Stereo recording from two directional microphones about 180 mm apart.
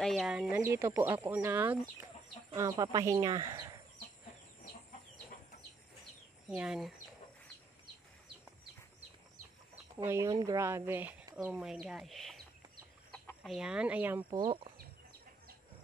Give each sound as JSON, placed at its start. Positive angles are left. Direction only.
{"t": 0.0, "sound": "speech", "side_deg": 0}
{"t": 6.5, "sound": "speech", "side_deg": -5}
{"t": 10.0, "sound": "speech", "side_deg": -15}
{"t": 13.4, "sound": "speech", "side_deg": -5}
{"t": 14.3, "sound": "speech", "side_deg": -25}